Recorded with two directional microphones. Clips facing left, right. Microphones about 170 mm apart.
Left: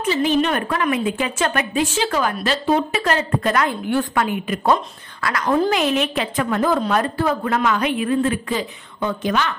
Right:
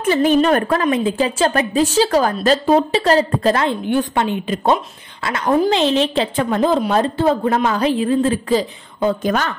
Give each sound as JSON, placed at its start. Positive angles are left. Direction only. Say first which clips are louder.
{"t": 0.1, "sound": "a woman's voice", "louder": "right 5 dB", "side_deg": -50}